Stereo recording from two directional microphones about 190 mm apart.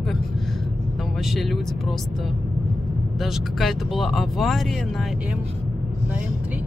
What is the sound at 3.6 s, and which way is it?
Speech, centre (ahead or behind).